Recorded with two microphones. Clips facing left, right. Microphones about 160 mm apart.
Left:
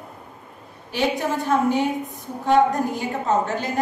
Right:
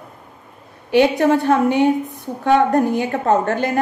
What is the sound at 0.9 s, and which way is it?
A woman's voice, 65° right (ahead or behind).